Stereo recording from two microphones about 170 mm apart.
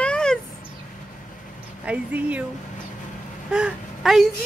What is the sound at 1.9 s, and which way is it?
Speech, 10° right (ahead or behind).